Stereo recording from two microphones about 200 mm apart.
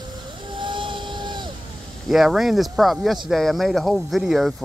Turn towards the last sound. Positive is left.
turn(degrees=0)  # may be behind; listen again after turning